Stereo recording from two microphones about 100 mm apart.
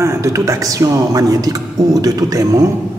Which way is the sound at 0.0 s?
30° right (ahead or behind).